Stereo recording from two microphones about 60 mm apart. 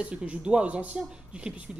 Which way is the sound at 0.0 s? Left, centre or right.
Centre.